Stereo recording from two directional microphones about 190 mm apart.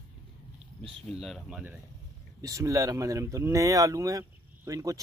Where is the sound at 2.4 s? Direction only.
15° right (ahead or behind).